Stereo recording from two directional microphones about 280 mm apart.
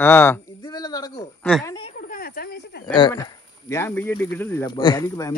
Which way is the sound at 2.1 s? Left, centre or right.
Left.